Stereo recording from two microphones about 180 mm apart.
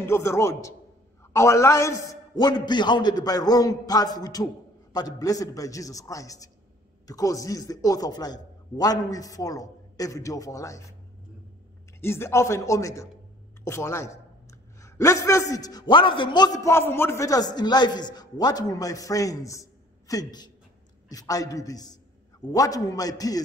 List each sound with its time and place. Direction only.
0.0 s a man's voice: 15° left (ahead or behind)
12.0 s a man's voice: 15° left (ahead or behind)